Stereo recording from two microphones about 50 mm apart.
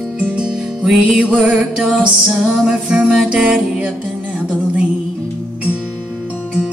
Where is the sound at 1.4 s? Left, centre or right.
Centre.